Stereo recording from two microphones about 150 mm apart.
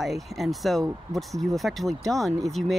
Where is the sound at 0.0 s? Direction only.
Centre (ahead or behind).